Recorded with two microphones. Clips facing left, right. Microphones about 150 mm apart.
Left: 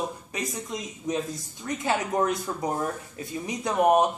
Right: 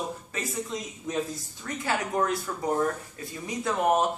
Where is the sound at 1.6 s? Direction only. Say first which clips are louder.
Left 3 dB; 20° left (ahead or behind).